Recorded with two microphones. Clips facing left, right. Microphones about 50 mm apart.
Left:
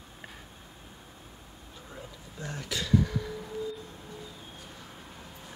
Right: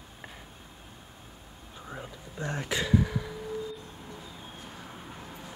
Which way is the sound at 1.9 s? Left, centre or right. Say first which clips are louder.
Right 5 dB; right.